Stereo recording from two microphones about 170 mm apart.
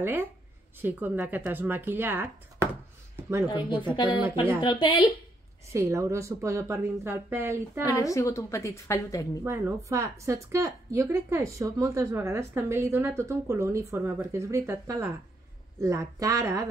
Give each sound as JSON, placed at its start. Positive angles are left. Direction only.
{"t": 0.0, "sound": "a woman's voice", "side_deg": -10}
{"t": 3.9, "sound": "speech", "side_deg": 30}
{"t": 5.7, "sound": "a woman's voice", "side_deg": -15}
{"t": 7.8, "sound": "a woman's voice", "side_deg": 20}
{"t": 9.4, "sound": "a woman's voice", "side_deg": -15}